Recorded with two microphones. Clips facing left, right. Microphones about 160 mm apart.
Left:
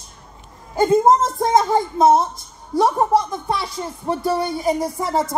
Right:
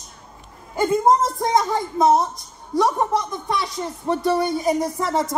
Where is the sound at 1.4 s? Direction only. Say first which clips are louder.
Left 3 dB; 25° left (ahead or behind).